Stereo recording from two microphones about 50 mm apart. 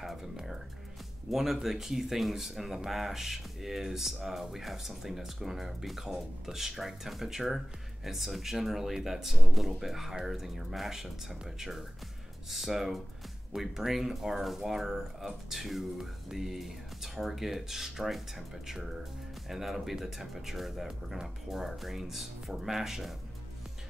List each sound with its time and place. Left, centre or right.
0.0 s music: centre
1.3 s speech: centre
19.5 s speech: centre